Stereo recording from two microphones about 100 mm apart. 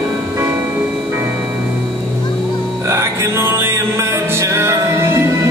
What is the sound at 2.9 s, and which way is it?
Music, 30° right (ahead or behind).